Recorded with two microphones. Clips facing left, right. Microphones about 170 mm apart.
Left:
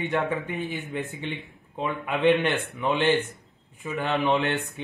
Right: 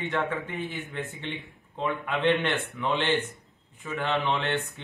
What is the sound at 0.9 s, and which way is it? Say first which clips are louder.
Speech: left 3 dB; 10° left (ahead or behind).